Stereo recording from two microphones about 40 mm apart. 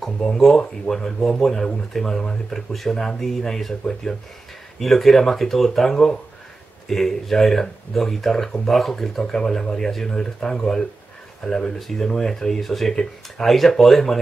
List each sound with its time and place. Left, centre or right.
0.2 s speech: centre
4.7 s speech: centre